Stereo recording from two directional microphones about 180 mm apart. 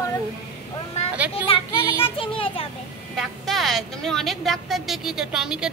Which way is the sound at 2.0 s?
30° left (ahead or behind).